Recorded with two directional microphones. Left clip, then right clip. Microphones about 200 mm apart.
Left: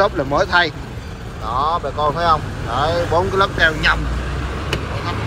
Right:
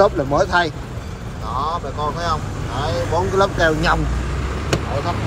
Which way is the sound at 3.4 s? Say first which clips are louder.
Even; 25° right (ahead or behind).